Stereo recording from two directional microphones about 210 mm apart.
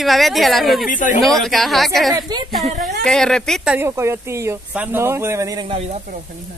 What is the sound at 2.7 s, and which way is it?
Speech, 40° right (ahead or behind).